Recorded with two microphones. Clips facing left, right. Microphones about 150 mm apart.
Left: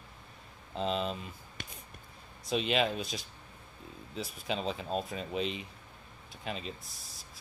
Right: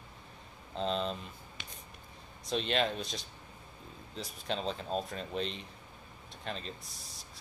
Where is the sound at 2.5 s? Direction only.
5° left (ahead or behind).